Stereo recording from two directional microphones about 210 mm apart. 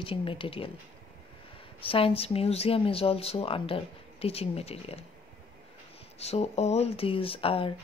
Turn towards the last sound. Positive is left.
turn(degrees=25)  # may be behind; listen again after turning